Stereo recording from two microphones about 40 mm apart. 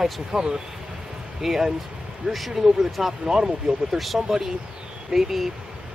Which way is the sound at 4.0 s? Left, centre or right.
Centre.